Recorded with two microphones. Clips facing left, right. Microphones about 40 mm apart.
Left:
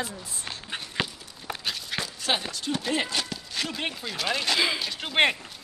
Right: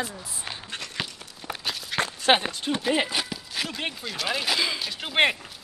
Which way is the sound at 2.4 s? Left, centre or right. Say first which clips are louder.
Right 2 dB; right.